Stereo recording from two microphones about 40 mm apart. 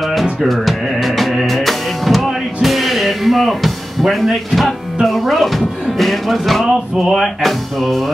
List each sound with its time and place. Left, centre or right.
0.1 s music: centre
5.0 s speech: centre